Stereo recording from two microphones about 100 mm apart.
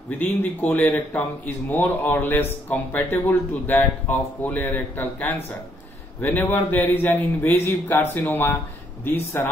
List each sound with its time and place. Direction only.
0.2 s speech: 15° left (ahead or behind)